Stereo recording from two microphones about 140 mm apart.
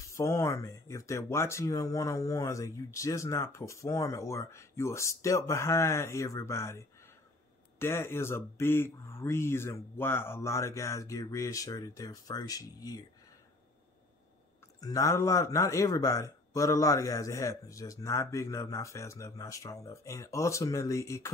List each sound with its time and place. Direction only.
0.0 s a man's voice: 20° left (ahead or behind)
14.8 s a man's voice: 25° left (ahead or behind)